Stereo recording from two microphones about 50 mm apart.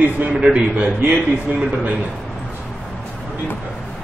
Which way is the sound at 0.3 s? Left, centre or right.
Right.